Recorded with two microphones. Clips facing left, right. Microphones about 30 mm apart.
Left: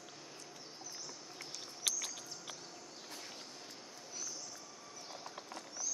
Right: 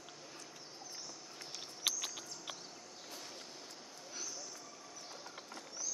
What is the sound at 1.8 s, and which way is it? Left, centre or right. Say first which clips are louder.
Cricket: right 2 dB; centre.